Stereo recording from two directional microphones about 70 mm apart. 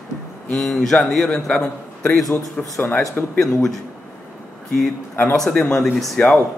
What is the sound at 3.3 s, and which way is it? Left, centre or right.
Speech, centre.